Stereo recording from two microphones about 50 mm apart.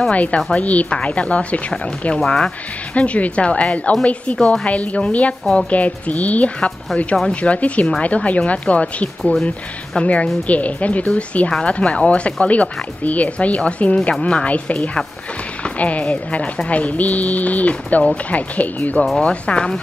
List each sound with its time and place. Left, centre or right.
0.1 s speech: left
2.1 s speech: centre
2.9 s speech: left
19.1 s speech: centre